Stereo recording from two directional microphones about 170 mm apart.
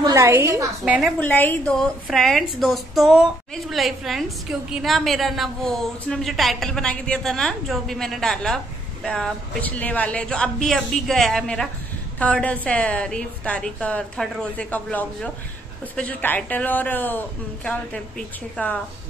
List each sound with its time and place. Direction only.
0.0 s a woman's voice: 20° right (ahead or behind)
1.2 s a woman's voice: 10° left (ahead or behind)